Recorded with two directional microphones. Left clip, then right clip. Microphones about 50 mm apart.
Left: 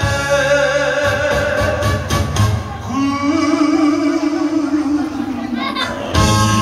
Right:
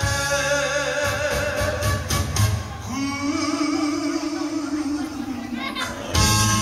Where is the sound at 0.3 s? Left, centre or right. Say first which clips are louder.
Left 10 dB; right.